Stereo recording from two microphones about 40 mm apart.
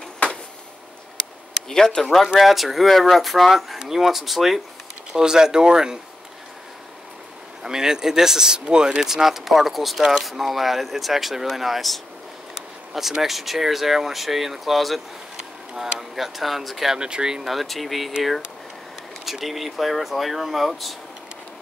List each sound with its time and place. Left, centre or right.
1.7 s speech: centre
2.2 s speech: centre
5.1 s speech: centre
7.6 s speech: centre
9.1 s speech: centre
13.2 s speech: centre
16.0 s speech: centre
16.9 s speech: centre
17.5 s speech: centre
19.2 s speech: centre